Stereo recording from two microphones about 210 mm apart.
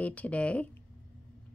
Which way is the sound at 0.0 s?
5° left (ahead or behind).